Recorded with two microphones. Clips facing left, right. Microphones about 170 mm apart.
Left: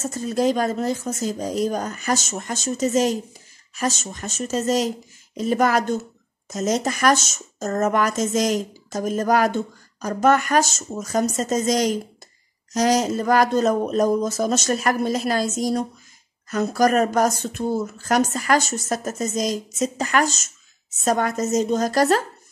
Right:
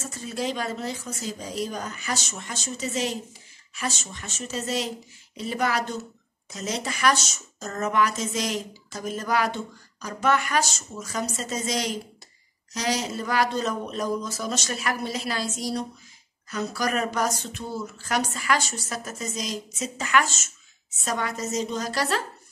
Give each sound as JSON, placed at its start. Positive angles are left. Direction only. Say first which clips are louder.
{"t": 0.0, "sound": "speech", "louder": "left 9 dB", "side_deg": 45}